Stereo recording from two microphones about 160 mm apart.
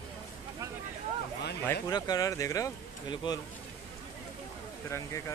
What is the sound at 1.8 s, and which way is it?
Speech, 25° left (ahead or behind).